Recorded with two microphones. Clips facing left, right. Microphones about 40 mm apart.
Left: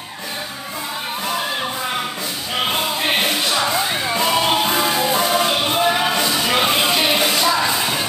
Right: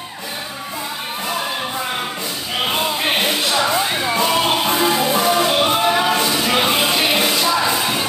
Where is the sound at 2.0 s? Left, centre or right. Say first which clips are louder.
Even; centre.